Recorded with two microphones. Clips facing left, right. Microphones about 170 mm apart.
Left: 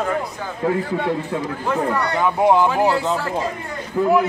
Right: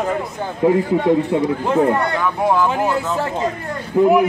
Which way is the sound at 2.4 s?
20° left (ahead or behind).